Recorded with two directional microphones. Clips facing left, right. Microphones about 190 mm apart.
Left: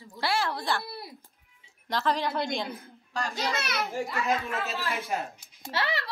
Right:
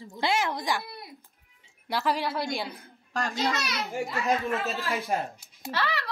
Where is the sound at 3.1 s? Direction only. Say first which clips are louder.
Right 3 dB; 50° right (ahead or behind).